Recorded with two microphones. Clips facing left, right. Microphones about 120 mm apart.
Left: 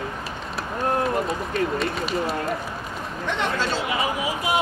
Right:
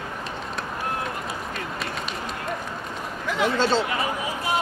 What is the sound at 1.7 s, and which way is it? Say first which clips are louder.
Speech: left 6 dB; centre (ahead or behind).